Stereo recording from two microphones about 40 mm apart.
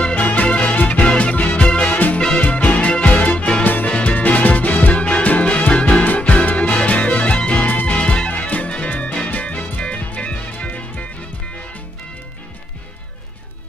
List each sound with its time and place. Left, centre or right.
0.1 s music: left
1.3 s music: left
1.6 s music: left
1.9 s music: left
2.1 s music: left
3.6 s music: left
3.9 s music: left
6.0 s music: left
7.6 s music: left
7.9 s music: left
9.3 s music: left
9.8 s music: left